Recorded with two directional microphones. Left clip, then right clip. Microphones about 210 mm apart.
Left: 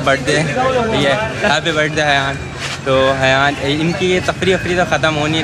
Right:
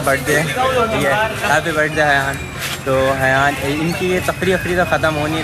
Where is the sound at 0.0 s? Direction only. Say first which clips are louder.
Left 1 dB; 15° left (ahead or behind).